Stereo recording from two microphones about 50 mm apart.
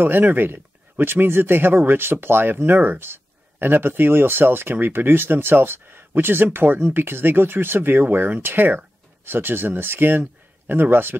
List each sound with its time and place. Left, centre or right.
0.0 s speech: right